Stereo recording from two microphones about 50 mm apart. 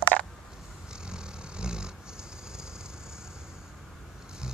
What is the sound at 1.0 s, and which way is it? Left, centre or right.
Vehicle, centre.